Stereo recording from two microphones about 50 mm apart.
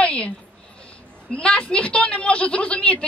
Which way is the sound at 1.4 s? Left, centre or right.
Left.